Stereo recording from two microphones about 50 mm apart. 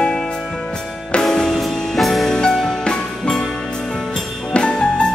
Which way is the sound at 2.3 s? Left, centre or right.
Centre.